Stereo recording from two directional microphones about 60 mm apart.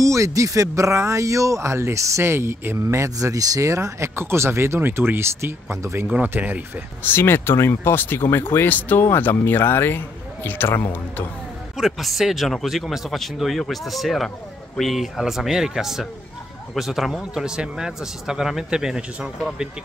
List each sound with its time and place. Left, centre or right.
0.0 s speech: right
2.9 s speech: right
3.6 s speech: right
6.2 s speech: right
7.0 s speech: left
9.0 s speech: left
11.7 s speech: centre